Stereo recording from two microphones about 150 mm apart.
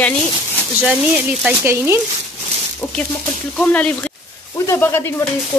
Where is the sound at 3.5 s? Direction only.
10° left (ahead or behind).